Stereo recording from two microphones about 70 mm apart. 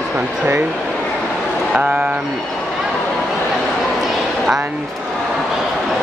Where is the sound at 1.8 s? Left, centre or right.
Centre.